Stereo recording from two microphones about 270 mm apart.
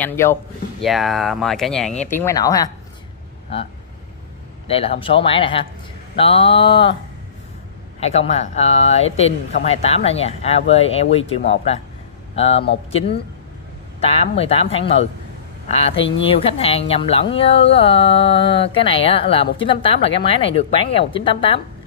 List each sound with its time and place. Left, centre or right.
0.0 s speech: centre
4.6 s speech: left
8.0 s speech: left
13.9 s speech: left